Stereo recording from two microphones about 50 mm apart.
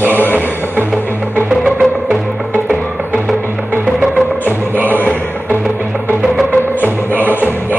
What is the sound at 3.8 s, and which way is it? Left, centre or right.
Music, centre.